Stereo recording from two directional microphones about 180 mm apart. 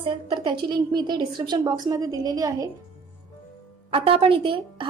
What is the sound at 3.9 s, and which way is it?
Speech, 30° right (ahead or behind).